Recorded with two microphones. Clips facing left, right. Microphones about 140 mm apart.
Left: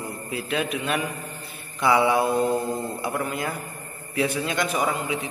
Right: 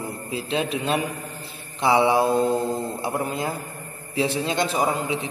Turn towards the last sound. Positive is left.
turn(degrees=-30)  # may be behind; listen again after turning